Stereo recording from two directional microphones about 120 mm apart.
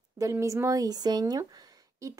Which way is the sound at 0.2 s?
25° right (ahead or behind).